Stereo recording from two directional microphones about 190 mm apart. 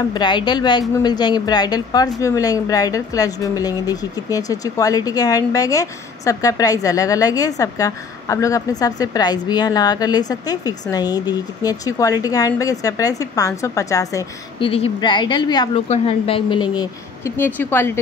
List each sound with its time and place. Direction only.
0.1 s a woman's voice: 25° left (ahead or behind)
17.6 s a woman's voice: 10° left (ahead or behind)